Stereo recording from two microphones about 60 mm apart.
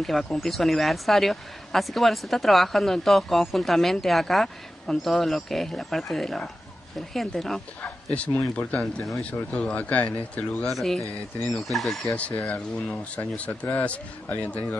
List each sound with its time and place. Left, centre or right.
0.0 s speech: centre
7.8 s speech: left
10.7 s speech: centre
12.2 s speech: left